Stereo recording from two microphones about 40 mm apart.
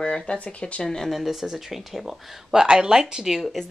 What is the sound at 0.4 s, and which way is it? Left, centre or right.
Speech, left.